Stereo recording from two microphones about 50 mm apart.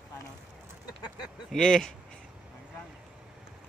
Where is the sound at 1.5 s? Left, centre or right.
Centre.